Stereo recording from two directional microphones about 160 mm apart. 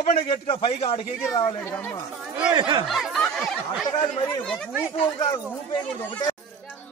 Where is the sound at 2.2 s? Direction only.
5° right (ahead or behind).